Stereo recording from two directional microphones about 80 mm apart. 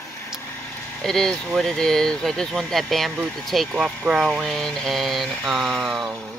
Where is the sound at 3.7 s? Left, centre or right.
Centre.